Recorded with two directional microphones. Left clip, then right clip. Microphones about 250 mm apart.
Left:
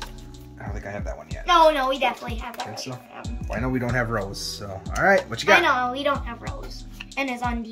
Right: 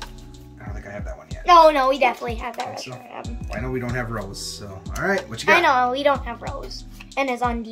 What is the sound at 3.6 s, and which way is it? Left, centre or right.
Speech, left.